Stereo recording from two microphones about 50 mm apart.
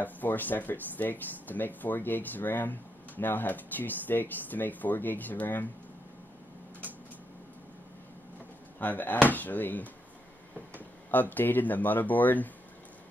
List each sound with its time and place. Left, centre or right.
0.0 s speech: left
8.7 s speech: left